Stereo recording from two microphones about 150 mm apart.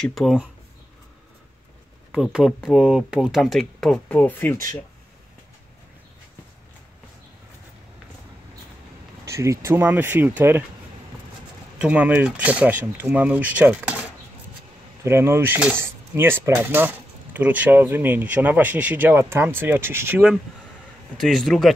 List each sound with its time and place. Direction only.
0.0 s speech: centre (ahead or behind)
2.1 s speech: 5° right (ahead or behind); by 4.6 s 10° left (ahead or behind)
9.2 s a sound: 20° right (ahead or behind)
9.7 s speech: 15° right (ahead or behind)
11.8 s speech: 10° right (ahead or behind)
15.0 s speech: 15° right (ahead or behind)
21.2 s speech: centre (ahead or behind)